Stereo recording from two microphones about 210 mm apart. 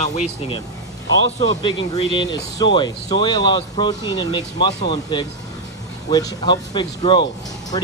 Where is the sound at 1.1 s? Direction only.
65° right (ahead or behind).